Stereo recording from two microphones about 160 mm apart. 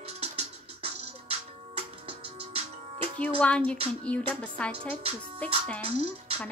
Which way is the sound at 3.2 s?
10° left (ahead or behind).